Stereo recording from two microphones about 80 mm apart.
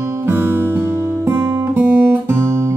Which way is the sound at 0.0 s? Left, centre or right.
Right.